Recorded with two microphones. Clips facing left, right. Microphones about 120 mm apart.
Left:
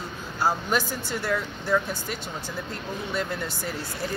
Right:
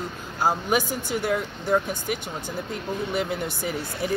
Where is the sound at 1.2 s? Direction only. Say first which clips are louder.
Right 2 dB; 15° right (ahead or behind).